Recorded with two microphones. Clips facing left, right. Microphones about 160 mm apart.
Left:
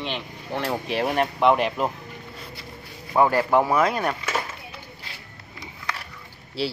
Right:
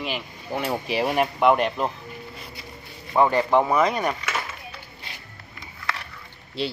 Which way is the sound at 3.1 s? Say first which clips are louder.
Even; 5° left (ahead or behind).